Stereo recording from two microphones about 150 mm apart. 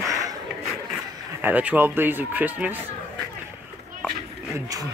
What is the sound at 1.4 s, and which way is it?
A man's voice, 10° right (ahead or behind).